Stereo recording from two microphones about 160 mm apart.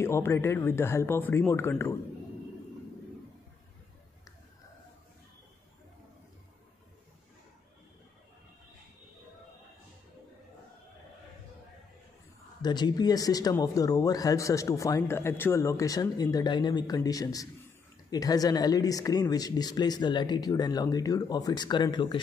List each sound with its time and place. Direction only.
0.0 s speech: 15° left (ahead or behind)
12.6 s speech: 25° left (ahead or behind)